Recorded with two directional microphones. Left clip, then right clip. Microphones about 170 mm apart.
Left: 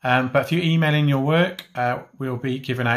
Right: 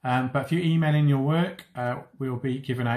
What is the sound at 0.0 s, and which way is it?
Speech, 40° left (ahead or behind).